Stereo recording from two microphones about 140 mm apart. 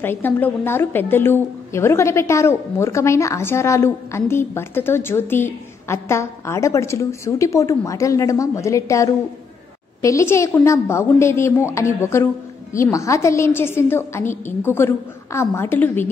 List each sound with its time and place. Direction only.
0.0 s a woman's voice: 15° left (ahead or behind)